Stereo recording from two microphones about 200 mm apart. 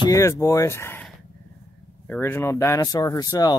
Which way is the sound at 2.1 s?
10° left (ahead or behind).